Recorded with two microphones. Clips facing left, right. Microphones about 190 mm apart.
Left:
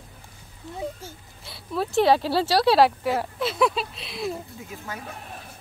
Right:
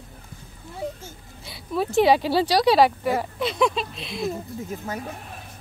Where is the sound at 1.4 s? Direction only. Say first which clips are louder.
Right 2 dB; centre (ahead or behind).